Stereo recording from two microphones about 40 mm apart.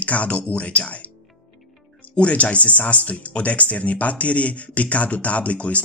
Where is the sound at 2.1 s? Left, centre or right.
Left.